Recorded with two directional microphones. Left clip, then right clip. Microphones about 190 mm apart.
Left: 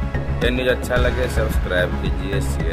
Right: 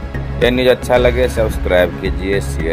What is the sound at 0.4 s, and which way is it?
Speech, 20° right (ahead or behind).